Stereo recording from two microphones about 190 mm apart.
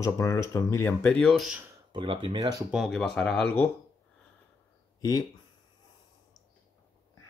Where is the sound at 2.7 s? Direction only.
Centre (ahead or behind).